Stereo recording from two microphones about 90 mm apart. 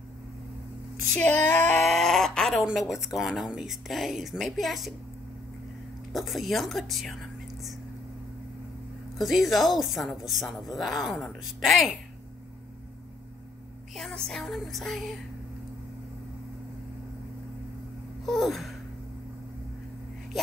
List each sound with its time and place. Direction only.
1.1 s speech: 15° left (ahead or behind)
1.8 s a sound: centre (ahead or behind)
2.6 s speech: centre (ahead or behind)
6.1 s speech: centre (ahead or behind)
9.2 s speech: centre (ahead or behind)
13.9 s speech: 5° left (ahead or behind)
18.2 s a sound: centre (ahead or behind)